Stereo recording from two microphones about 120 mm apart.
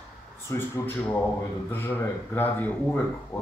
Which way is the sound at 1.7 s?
20° left (ahead or behind).